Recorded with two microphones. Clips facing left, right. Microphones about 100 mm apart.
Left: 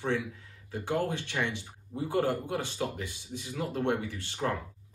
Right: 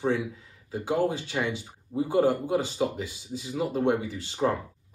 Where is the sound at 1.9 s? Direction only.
15° right (ahead or behind).